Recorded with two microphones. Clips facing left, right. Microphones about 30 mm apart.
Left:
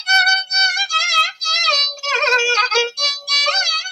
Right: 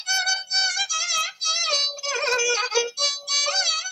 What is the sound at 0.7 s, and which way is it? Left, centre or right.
Music, left.